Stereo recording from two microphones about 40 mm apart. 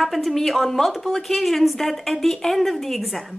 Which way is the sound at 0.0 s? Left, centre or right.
Centre.